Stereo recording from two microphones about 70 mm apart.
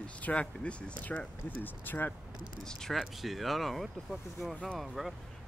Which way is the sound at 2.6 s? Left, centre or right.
Centre.